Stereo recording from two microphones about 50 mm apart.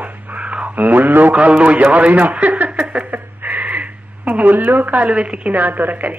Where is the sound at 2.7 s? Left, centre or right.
Right.